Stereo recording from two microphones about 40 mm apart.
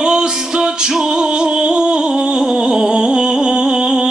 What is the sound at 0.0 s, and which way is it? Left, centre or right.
Music, centre.